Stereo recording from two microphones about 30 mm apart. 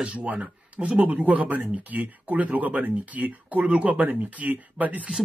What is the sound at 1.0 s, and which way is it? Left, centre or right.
Speech, right.